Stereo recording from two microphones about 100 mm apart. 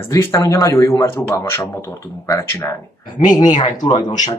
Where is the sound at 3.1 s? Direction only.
45° left (ahead or behind).